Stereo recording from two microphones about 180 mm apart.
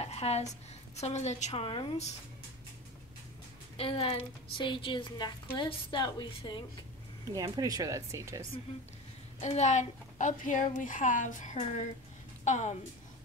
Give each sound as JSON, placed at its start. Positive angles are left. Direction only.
{"t": 0.0, "sound": "a woman's voice", "side_deg": 35}
{"t": 3.7, "sound": "a woman's voice", "side_deg": 30}
{"t": 7.3, "sound": "speech", "side_deg": -20}
{"t": 9.4, "sound": "a woman's voice", "side_deg": 40}